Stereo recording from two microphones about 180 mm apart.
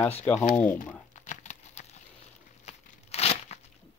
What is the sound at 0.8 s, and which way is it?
Crumpling, 45° left (ahead or behind).